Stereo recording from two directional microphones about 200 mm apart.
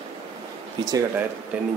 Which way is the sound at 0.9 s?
15° right (ahead or behind).